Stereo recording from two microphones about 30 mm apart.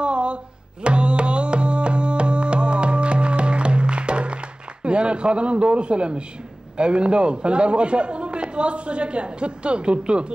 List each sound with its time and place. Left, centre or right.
0.0 s music: right
6.8 s a man's voice: right